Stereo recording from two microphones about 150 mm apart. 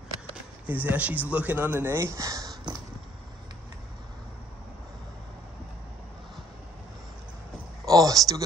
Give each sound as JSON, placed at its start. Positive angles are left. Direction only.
{"t": 0.7, "sound": "speech", "side_deg": -10}
{"t": 7.8, "sound": "speech", "side_deg": -25}